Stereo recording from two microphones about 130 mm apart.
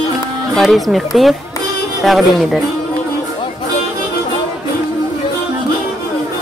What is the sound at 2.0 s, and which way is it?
Speech, centre (ahead or behind).